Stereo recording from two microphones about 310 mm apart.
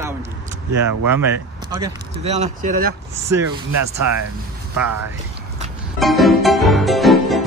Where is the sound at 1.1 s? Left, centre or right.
Centre; by 2.9 s right.